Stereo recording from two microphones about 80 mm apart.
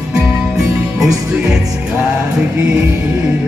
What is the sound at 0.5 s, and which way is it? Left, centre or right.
Music, centre.